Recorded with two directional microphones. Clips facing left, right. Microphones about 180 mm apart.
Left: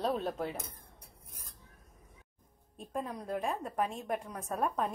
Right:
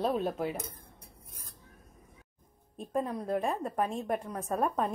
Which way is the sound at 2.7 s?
Centre (ahead or behind).